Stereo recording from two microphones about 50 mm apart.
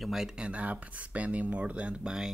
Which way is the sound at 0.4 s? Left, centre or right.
Right.